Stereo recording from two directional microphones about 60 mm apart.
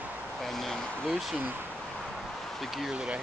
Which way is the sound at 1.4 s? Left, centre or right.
Right.